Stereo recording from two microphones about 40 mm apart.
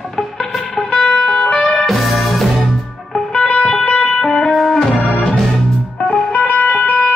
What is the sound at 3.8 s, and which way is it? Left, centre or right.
Music, left.